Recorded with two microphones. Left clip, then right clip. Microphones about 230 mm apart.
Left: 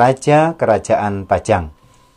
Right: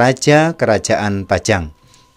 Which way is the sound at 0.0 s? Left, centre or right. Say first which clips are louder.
Even; right.